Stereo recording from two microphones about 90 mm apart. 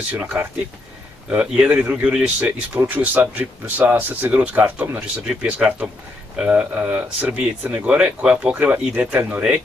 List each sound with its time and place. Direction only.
0.2 s speech: 25° right (ahead or behind)